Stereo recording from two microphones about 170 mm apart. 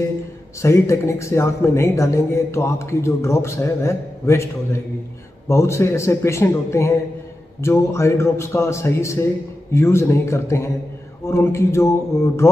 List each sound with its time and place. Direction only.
0.6 s speech: 15° left (ahead or behind)
5.5 s speech: 15° left (ahead or behind)